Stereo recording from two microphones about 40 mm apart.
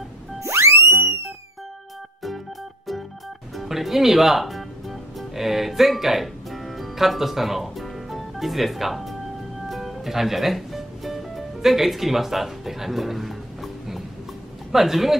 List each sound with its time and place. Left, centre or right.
0.5 s music: right
3.5 s music: centre
14.7 s a man's voice: centre